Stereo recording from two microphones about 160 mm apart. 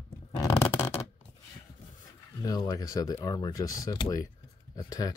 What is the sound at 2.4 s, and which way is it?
Speech, 25° left (ahead or behind).